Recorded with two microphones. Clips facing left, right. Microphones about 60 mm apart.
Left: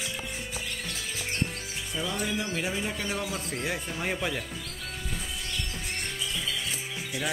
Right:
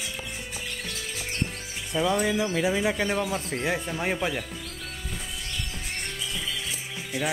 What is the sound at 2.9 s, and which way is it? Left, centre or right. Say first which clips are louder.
Speech: right 6 dB; right.